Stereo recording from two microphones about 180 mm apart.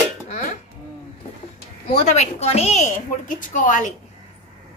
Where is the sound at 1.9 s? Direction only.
35° left (ahead or behind).